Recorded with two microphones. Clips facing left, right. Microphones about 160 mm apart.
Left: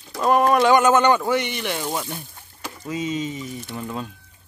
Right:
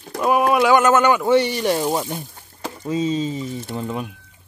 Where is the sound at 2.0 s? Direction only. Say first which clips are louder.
Right 4 dB; 20° right (ahead or behind).